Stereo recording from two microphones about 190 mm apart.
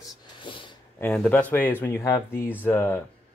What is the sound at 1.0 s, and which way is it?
Speech, 5° left (ahead or behind).